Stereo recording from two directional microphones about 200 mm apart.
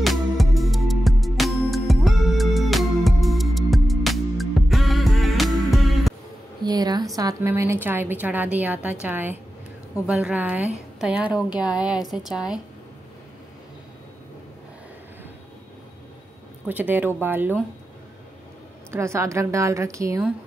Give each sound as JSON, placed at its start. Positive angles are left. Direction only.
{"t": 0.0, "sound": "music", "side_deg": 0}
{"t": 6.6, "sound": "a sound", "side_deg": -20}
{"t": 7.2, "sound": "a woman's voice", "side_deg": -15}
{"t": 16.6, "sound": "a woman's voice", "side_deg": -10}
{"t": 18.9, "sound": "a woman's voice", "side_deg": -15}